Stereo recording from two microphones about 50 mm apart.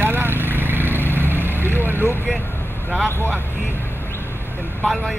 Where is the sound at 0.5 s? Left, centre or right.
Right.